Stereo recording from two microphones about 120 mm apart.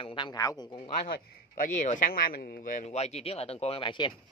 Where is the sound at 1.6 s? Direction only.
90° left.